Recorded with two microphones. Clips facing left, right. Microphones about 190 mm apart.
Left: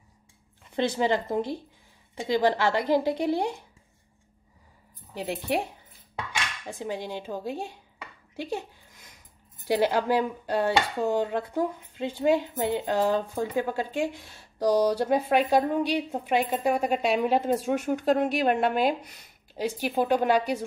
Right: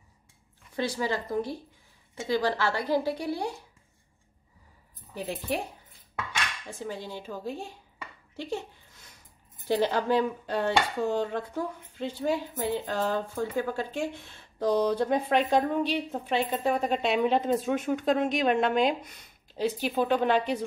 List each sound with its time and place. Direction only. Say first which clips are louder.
0.9 s a woman's voice: left 4 dB; 20° left (ahead or behind)
6.7 s speech: left 6 dB; 15° left (ahead or behind)
8.4 s a sound: left 1 dB; 15° left (ahead or behind)
9.7 s speech: left 2 dB; 10° left (ahead or behind)